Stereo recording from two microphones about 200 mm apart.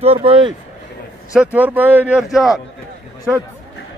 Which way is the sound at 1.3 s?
5° right (ahead or behind).